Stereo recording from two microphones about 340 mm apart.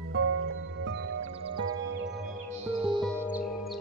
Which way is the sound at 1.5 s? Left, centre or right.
Centre.